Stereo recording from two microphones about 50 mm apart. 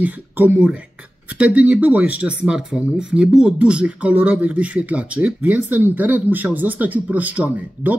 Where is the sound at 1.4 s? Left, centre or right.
Right.